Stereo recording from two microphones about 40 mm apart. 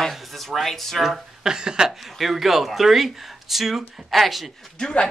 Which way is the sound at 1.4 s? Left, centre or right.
Centre.